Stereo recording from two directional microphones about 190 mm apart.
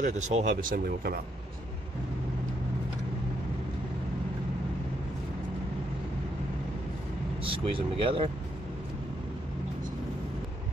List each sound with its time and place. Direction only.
0.0 s speech: 40° right (ahead or behind)
7.4 s speech: 30° right (ahead or behind)